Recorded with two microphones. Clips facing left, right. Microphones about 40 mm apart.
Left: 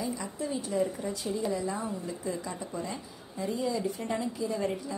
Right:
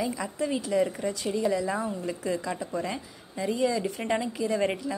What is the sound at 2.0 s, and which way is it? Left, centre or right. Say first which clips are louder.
A woman's voice: right 5 dB; right.